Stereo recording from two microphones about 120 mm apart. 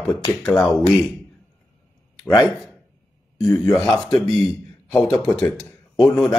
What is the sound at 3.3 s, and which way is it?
Speech, 30° left (ahead or behind).